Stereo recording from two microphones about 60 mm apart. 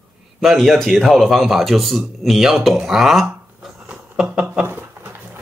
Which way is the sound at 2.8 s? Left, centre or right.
Centre.